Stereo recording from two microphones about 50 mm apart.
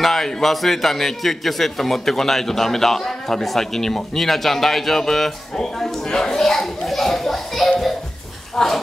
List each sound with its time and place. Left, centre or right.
0.0 s a man's voice: centre